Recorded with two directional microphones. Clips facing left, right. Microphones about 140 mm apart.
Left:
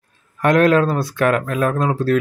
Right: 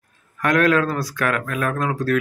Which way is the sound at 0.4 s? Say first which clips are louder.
Left 4 dB; 25° left (ahead or behind).